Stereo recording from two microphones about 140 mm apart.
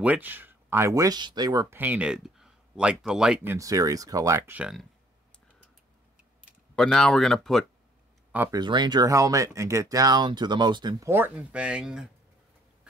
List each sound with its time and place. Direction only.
0.0 s speech: 10° right (ahead or behind)
3.4 s speech: 25° right (ahead or behind)
4.6 s speech: 5° right (ahead or behind)
6.7 s speech: 5° left (ahead or behind)
8.5 s speech: 30° right (ahead or behind)
11.1 s speech: 15° right (ahead or behind)